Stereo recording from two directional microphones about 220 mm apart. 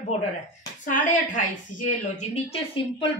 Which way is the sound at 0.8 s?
35° left (ahead or behind).